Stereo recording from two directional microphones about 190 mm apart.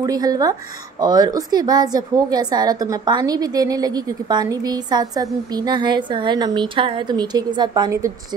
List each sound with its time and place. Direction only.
0.0 s a woman's voice: 20° right (ahead or behind)